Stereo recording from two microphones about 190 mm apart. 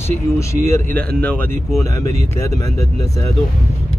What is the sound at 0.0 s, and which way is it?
Speech, 15° left (ahead or behind).